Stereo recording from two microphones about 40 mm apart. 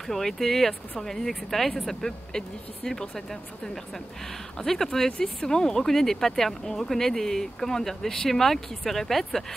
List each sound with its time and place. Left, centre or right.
0.1 s speech: centre